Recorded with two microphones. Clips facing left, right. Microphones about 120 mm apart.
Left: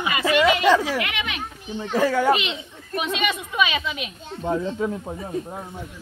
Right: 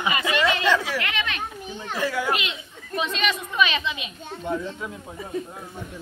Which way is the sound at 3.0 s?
10° left (ahead or behind).